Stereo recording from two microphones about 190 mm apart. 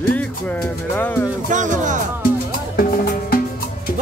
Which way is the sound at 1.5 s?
40° right (ahead or behind).